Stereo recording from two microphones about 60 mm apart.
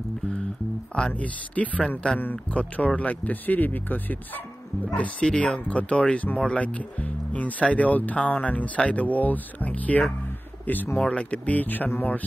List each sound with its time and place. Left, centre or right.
0.9 s speech: centre